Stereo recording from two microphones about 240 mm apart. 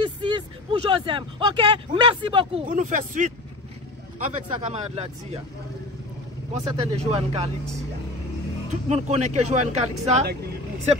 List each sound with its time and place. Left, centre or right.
0.0 s speech: centre
2.7 s speech: right
6.5 s speech: right
8.8 s speech: right